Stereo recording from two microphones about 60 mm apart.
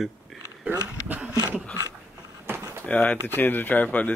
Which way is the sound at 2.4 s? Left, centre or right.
Right.